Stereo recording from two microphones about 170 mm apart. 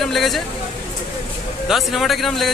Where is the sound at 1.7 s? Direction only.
Centre (ahead or behind).